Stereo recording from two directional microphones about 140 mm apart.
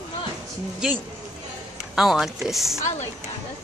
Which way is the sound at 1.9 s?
Centre (ahead or behind).